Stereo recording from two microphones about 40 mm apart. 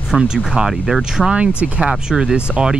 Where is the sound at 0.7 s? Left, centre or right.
Centre.